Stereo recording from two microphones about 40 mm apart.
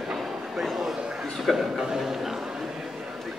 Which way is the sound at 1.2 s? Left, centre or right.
Centre.